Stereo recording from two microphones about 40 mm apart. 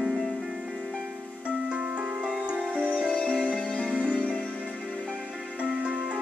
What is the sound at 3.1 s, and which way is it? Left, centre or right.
Music, centre.